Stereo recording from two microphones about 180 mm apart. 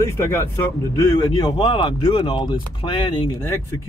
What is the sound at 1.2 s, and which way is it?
Speech, 25° left (ahead or behind).